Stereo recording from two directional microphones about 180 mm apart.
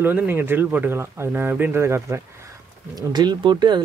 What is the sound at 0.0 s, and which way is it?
Speech, 10° right (ahead or behind).